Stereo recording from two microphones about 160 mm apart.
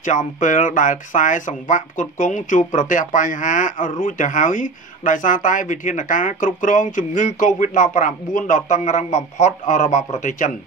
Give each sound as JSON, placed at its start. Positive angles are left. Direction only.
{"t": 0.0, "sound": "speech", "side_deg": 50}